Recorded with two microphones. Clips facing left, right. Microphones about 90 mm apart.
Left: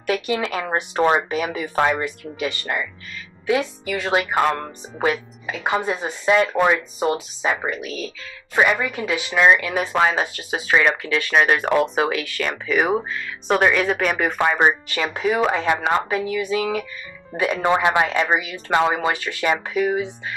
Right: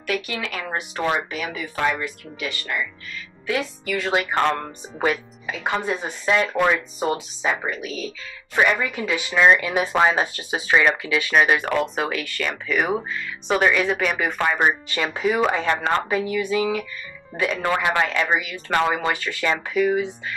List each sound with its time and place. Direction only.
0.0 s speech: 30° left (ahead or behind)
3.4 s speech: 15° left (ahead or behind)
16.1 s speech: centre (ahead or behind)
17.3 s speech: 15° left (ahead or behind)